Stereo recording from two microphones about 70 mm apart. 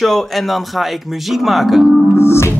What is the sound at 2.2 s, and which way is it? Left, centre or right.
Music, left.